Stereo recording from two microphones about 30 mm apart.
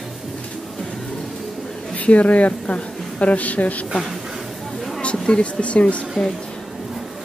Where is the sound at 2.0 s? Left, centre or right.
Left.